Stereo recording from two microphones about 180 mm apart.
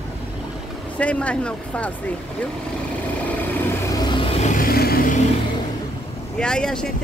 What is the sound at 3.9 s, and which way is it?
Vehicle, 25° left (ahead or behind).